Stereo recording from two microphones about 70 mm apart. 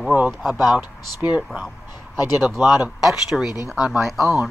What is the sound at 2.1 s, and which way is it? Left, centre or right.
Speech, left.